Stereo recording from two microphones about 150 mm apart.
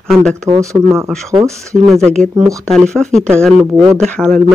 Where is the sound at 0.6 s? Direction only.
20° right (ahead or behind).